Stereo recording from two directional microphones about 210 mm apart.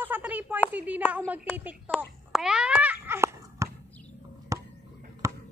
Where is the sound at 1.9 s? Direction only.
5° right (ahead or behind).